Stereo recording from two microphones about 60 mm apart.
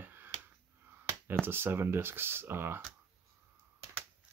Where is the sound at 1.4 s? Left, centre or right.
Right.